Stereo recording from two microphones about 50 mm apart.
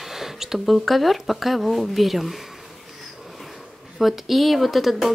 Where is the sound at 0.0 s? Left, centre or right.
Centre.